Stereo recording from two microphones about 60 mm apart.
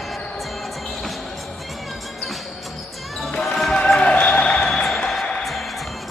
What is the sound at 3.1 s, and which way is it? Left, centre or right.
Basketball bounce, centre.